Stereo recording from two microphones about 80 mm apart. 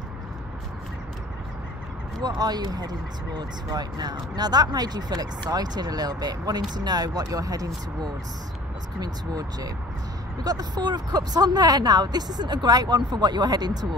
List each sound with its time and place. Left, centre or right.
2.2 s speech: right